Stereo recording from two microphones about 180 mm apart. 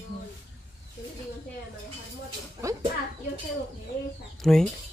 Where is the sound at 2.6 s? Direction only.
15° right (ahead or behind).